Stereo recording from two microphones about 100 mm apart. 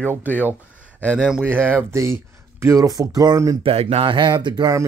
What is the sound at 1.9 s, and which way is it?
Speech, 25° right (ahead or behind).